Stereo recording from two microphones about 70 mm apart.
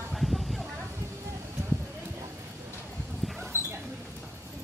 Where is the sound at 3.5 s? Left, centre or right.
Right.